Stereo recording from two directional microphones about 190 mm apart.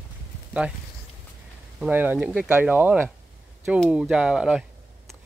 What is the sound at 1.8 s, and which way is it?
Speech, 10° right (ahead or behind).